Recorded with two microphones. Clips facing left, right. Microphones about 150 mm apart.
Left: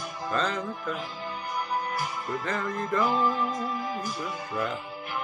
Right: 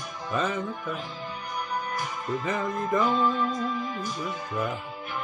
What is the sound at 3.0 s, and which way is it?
Music, 10° left (ahead or behind).